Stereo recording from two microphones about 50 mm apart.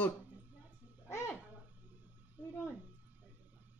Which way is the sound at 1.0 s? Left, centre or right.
Left.